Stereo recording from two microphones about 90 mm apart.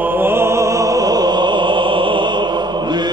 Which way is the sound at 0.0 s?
25° right (ahead or behind).